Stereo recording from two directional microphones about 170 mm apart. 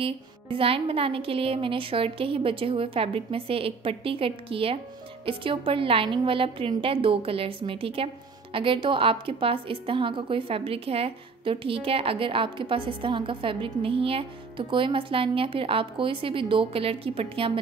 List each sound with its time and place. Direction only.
0.0 s a woman's voice: 30° right (ahead or behind)